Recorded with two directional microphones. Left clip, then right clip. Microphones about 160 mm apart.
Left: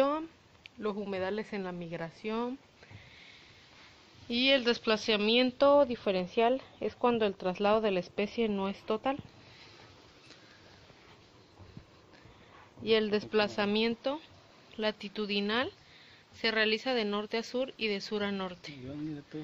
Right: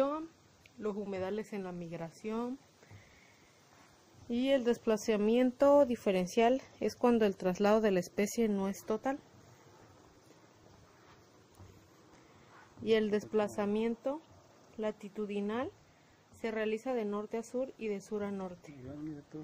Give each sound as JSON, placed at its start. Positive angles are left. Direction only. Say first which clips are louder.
{"t": 0.7, "sound": "speech", "louder": "left 3 dB", "side_deg": -15}
{"t": 4.3, "sound": "speech", "louder": "left 4 dB", "side_deg": -25}
{"t": 5.9, "sound": "speech", "louder": "left 1 dB", "side_deg": -45}
{"t": 6.3, "sound": "speech", "louder": "left 1 dB", "side_deg": -65}
{"t": 8.5, "sound": "speech", "louder": "left 2 dB", "side_deg": -40}
{"t": 12.8, "sound": "speech", "louder": "left 2 dB", "side_deg": -40}
{"t": 13.2, "sound": "speech", "louder": "left 4 dB", "side_deg": -15}